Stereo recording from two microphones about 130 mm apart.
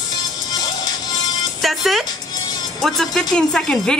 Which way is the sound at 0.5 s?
35° left (ahead or behind).